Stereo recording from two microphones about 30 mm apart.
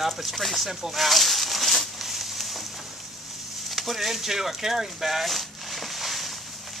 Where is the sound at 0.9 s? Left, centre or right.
Centre.